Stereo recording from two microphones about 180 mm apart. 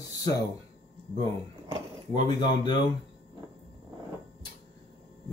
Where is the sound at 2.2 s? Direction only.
25° left (ahead or behind).